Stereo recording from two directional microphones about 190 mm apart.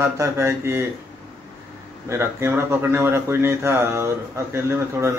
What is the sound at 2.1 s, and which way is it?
A man's voice, 15° right (ahead or behind).